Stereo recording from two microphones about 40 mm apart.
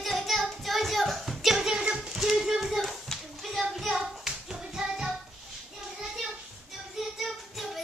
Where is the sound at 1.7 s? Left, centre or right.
Right.